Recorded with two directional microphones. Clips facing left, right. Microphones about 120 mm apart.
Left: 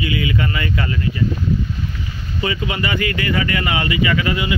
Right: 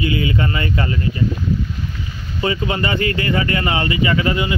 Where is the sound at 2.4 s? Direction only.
30° right (ahead or behind).